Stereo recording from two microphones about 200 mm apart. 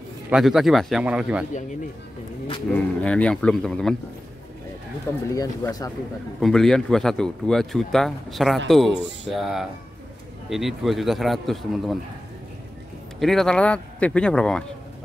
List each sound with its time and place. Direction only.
0.3 s speech: centre (ahead or behind)
2.7 s speech: 5° left (ahead or behind)
5.3 s speech: 20° left (ahead or behind)
6.4 s speech: centre (ahead or behind)
13.2 s speech: centre (ahead or behind)